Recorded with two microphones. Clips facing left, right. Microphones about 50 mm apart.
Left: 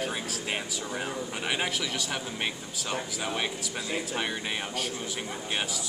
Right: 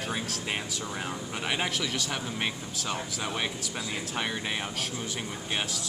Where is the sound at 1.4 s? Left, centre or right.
Centre.